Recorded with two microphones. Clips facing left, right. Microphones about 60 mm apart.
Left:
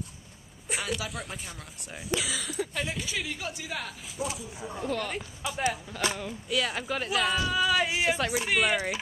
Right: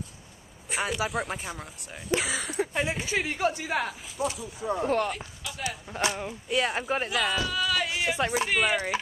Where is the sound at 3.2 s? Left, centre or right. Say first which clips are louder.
Right 8 dB; right.